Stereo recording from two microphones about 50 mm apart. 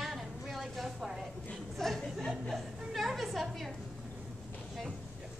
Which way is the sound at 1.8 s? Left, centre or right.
Centre.